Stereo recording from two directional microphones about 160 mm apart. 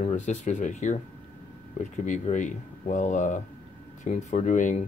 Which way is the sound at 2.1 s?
50° left (ahead or behind).